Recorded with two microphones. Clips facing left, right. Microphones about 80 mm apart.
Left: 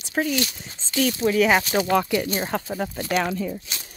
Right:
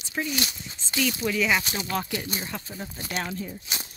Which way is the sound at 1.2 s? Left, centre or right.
Left.